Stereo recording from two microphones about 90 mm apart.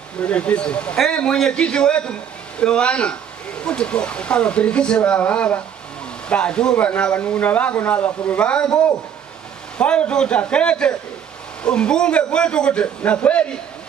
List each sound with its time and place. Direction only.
0.2 s speech: 15° left (ahead or behind)
9.8 s speech: 15° left (ahead or behind)